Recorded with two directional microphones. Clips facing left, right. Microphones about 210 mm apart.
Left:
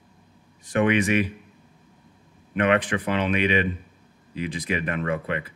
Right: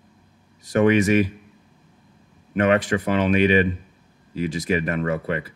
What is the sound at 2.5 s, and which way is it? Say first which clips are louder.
Speech: right 3 dB; 40° right (ahead or behind).